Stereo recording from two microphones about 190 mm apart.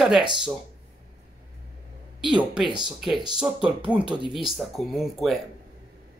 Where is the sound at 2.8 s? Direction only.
Centre (ahead or behind).